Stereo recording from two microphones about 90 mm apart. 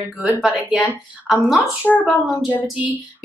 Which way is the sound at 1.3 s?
Centre (ahead or behind).